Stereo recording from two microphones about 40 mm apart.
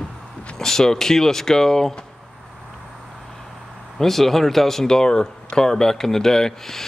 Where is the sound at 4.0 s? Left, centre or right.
Centre.